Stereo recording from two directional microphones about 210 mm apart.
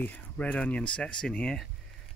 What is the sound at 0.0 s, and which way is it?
Speech, 5° left (ahead or behind).